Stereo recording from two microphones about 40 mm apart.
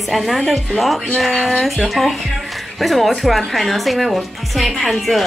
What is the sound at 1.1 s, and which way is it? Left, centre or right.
Speech, centre.